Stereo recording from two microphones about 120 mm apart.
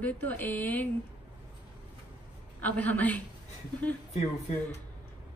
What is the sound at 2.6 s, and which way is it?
Speech, 10° left (ahead or behind).